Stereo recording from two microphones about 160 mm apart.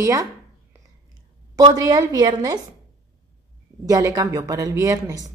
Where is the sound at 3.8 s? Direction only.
20° right (ahead or behind).